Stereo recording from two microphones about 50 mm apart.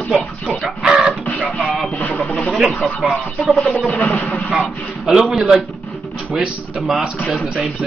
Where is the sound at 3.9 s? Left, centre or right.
Left.